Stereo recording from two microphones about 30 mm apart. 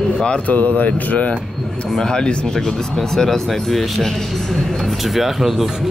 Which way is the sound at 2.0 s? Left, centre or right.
Left.